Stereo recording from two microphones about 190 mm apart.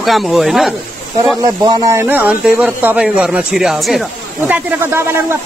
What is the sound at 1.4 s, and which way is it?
A man's voice, 20° right (ahead or behind).